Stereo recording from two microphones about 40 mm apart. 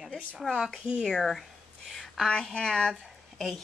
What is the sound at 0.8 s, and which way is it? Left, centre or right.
Speech, centre.